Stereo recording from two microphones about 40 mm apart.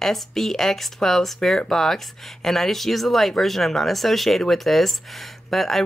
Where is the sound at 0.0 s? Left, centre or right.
Centre.